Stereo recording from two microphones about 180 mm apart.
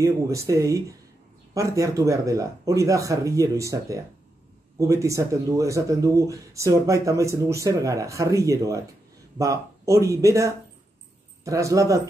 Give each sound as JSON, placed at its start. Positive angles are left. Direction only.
{"t": 0.0, "sound": "speech", "side_deg": -15}